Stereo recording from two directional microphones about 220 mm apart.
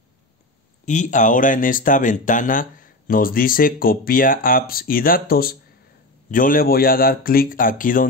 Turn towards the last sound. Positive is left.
turn(degrees=40)  # may be behind; listen again after turning